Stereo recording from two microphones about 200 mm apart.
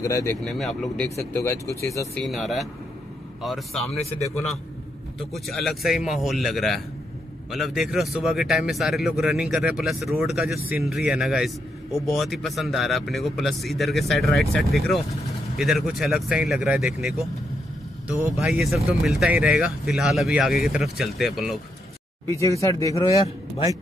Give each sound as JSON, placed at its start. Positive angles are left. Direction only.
{"t": 0.0, "sound": "speech", "side_deg": 15}
{"t": 0.5, "sound": "speech", "side_deg": 0}
{"t": 2.2, "sound": "speech", "side_deg": 0}
{"t": 4.0, "sound": "a man's voice", "side_deg": 30}
{"t": 5.3, "sound": "speech", "side_deg": 0}
{"t": 18.4, "sound": "speech", "side_deg": -5}
{"t": 22.3, "sound": "speech", "side_deg": 15}